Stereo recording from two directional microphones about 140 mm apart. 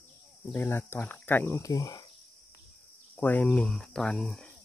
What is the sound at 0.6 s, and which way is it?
Speech, 15° left (ahead or behind).